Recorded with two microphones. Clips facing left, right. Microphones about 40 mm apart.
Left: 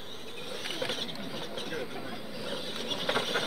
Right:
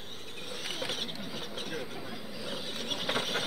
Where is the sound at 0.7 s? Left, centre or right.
Centre.